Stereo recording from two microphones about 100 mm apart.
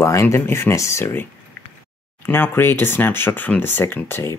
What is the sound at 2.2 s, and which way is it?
Speech, 20° left (ahead or behind).